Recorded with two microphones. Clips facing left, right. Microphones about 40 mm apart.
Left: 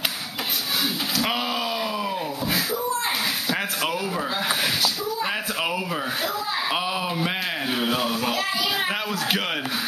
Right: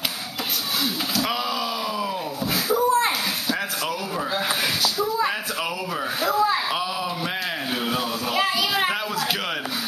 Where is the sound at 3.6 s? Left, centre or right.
Left.